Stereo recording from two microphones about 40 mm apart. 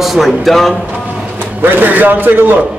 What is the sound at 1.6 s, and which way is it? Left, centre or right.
Speech, right.